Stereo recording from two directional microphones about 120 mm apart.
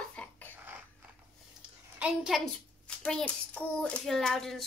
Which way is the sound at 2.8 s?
10° left (ahead or behind).